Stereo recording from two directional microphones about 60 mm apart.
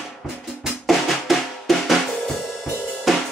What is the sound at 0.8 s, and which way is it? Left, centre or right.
Drum, centre.